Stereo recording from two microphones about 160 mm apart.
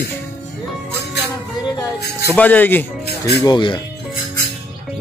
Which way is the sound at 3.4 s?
30° left (ahead or behind).